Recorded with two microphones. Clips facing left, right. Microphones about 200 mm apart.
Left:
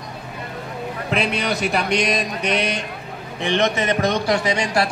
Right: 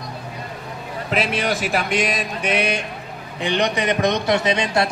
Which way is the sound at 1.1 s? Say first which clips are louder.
Right 1 dB; 5° right (ahead or behind).